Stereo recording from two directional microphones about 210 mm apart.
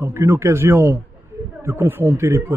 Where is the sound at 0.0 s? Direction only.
15° right (ahead or behind).